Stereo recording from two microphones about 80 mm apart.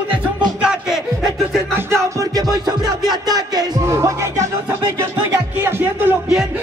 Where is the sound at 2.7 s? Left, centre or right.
Right.